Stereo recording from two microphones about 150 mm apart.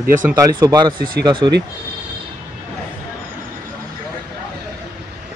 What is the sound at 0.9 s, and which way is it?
Speech, 70° right (ahead or behind).